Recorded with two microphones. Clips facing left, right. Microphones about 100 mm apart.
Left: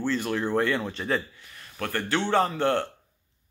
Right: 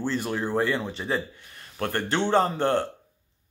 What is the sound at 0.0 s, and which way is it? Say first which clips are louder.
Speech: left 1 dB; 15° right (ahead or behind).